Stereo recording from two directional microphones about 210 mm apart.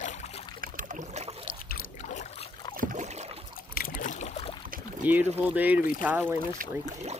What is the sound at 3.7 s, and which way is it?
Boat, 40° left (ahead or behind).